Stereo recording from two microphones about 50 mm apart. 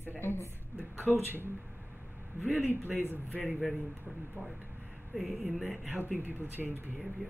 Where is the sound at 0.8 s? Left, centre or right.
Right.